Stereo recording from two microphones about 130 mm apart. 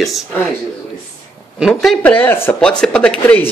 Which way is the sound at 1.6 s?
Centre (ahead or behind).